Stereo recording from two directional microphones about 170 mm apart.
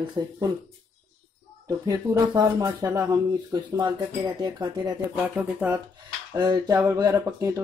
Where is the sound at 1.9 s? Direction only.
20° right (ahead or behind).